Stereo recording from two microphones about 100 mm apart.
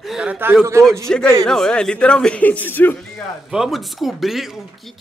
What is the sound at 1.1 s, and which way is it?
Speech, 10° left (ahead or behind).